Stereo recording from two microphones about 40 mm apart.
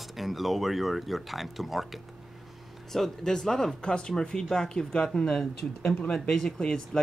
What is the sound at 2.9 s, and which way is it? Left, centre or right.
Speech, centre.